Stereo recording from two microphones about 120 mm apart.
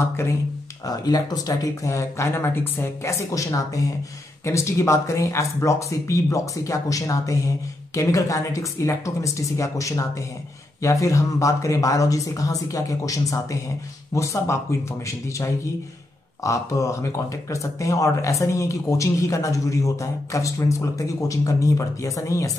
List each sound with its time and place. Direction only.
0.0 s speech: 20° left (ahead or behind)
0.8 s speech: 30° left (ahead or behind)